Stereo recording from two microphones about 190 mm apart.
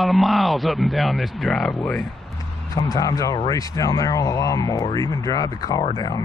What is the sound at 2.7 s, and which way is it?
Speech, 15° left (ahead or behind).